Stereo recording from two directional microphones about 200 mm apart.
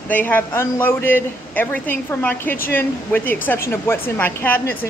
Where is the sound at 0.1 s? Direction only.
10° left (ahead or behind).